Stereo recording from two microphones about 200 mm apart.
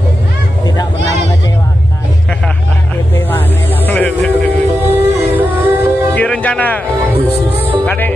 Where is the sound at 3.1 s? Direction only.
10° left (ahead or behind).